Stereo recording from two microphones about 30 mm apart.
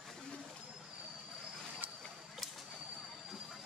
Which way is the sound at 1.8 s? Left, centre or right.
Right.